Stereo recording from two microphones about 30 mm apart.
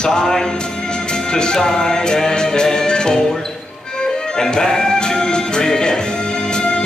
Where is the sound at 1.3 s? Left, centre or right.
Left.